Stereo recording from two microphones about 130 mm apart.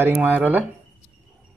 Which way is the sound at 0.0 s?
15° right (ahead or behind).